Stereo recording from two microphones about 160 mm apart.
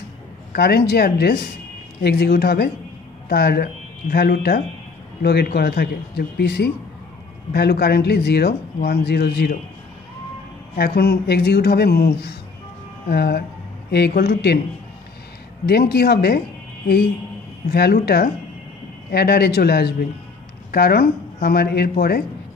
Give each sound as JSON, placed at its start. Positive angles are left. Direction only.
{"t": 0.5, "sound": "speech", "side_deg": 80}
{"t": 10.8, "sound": "speech", "side_deg": 85}
{"t": 15.6, "sound": "speech", "side_deg": 90}